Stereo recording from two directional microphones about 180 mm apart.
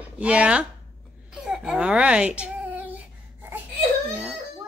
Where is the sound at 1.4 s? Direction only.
5° right (ahead or behind).